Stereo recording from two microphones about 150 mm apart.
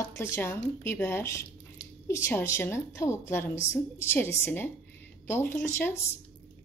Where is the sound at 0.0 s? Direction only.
20° left (ahead or behind).